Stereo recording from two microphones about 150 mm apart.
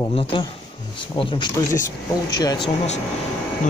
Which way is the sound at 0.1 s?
35° left (ahead or behind).